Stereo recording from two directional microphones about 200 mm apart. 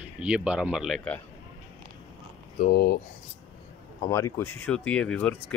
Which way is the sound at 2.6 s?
50° left (ahead or behind).